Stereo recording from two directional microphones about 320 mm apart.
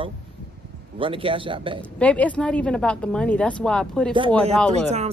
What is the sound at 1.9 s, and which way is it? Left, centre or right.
A woman's voice, centre.